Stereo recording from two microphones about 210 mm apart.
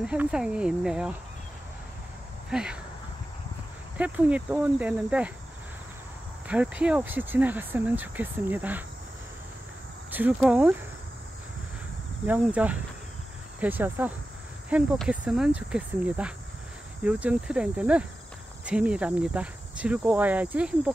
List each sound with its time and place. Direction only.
0.0 s speech: 5° right (ahead or behind)
2.5 s speech: 5° right (ahead or behind)
4.0 s speech: 5° right (ahead or behind)
6.4 s speech: 5° right (ahead or behind)
10.1 s speech: 5° right (ahead or behind)
12.3 s speech: 5° right (ahead or behind)